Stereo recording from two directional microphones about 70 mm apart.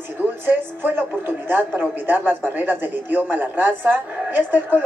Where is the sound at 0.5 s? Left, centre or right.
Right.